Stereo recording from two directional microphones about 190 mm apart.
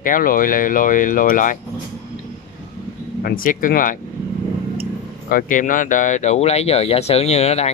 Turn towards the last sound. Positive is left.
turn(degrees=35)  # may be behind; listen again after turning